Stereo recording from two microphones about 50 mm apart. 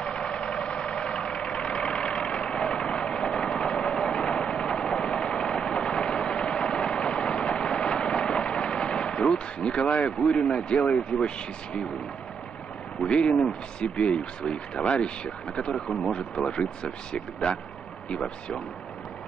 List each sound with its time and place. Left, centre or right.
0.0 s vehicle: centre
13.0 s speech: left